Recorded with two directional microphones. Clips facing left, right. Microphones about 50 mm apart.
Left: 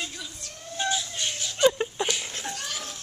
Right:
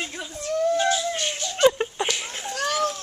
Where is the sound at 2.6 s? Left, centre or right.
Right.